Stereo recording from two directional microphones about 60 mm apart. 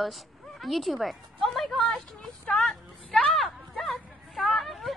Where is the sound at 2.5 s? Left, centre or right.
Centre.